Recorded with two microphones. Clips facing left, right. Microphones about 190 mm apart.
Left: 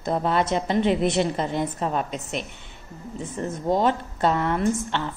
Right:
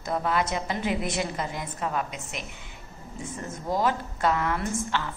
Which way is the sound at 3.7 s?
25° left (ahead or behind).